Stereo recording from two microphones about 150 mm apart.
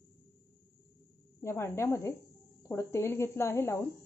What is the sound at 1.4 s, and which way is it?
Speech, 15° left (ahead or behind).